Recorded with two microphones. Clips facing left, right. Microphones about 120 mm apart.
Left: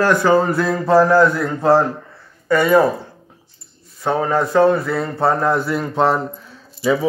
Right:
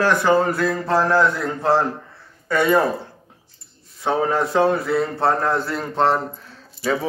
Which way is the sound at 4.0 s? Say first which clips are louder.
Left 2 dB; centre (ahead or behind).